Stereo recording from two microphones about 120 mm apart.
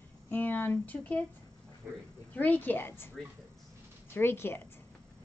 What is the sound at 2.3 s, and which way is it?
Speech, 15° left (ahead or behind).